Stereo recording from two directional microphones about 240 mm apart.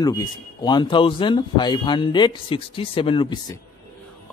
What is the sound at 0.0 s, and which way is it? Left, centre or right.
A man's voice, centre.